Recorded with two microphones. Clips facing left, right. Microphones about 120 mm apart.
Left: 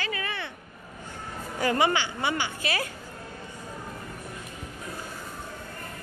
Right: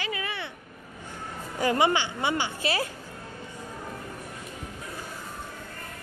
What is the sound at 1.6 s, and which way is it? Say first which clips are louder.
A woman's voice: right 1 dB; 20° right (ahead or behind).